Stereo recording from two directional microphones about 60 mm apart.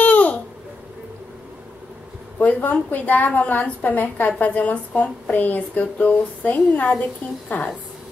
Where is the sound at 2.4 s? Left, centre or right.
Left.